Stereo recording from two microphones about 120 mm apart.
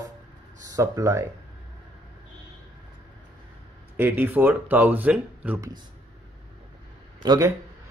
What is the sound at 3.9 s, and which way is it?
Speech, 20° right (ahead or behind).